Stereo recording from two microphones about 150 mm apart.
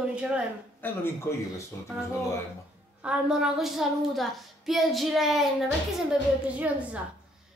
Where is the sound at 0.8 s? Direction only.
15° left (ahead or behind).